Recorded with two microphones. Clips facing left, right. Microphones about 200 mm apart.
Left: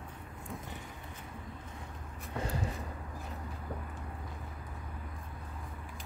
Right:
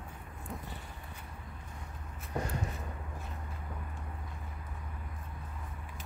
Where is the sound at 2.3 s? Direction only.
30° left (ahead or behind).